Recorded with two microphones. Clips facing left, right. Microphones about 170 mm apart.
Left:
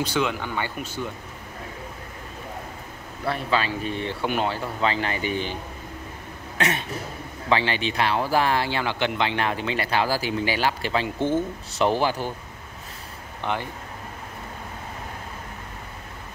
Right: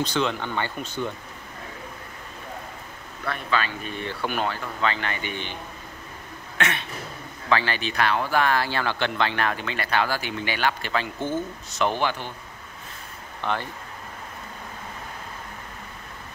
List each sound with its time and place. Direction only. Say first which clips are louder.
0.0 s speech: even; 10° left (ahead or behind)
3.3 s speech: left 2 dB; 30° left (ahead or behind)
6.6 s speech: left 2 dB; 40° left (ahead or behind)
7.4 s speech: left 1 dB; 25° left (ahead or behind)
13.4 s speech: even; 15° left (ahead or behind)